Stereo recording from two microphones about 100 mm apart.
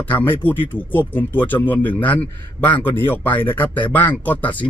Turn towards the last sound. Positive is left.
turn(degrees=15)  # may be behind; listen again after turning